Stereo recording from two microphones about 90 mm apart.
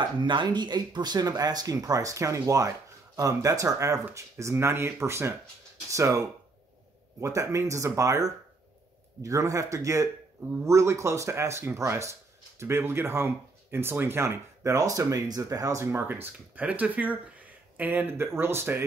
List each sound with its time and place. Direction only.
0.2 s speech: 60° right (ahead or behind); by 15.9 s 35° right (ahead or behind)
15.9 s speech: 25° right (ahead or behind)